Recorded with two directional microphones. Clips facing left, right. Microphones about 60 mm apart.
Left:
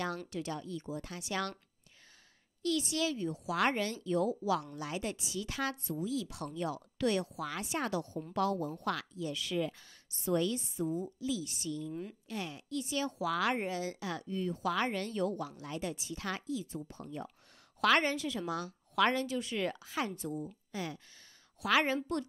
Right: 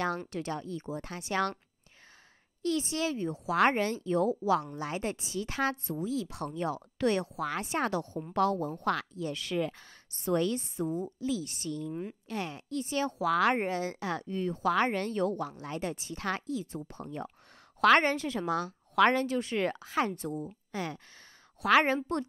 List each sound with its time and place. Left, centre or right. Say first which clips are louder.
0.0 s a woman's voice: right 5 dB; right
2.6 s a woman's voice: right 2 dB; right
11.9 s speech: right 4 dB; right
12.3 s a woman's voice: right 4 dB; right